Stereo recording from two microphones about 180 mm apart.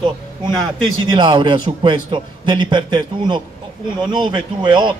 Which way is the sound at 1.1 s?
25° right (ahead or behind).